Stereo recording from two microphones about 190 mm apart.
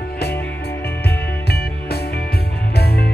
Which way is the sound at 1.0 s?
60° left (ahead or behind).